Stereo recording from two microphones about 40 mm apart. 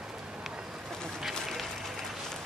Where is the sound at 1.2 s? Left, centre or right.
Centre.